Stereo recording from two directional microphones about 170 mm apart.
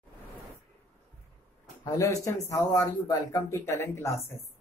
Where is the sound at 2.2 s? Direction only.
20° left (ahead or behind).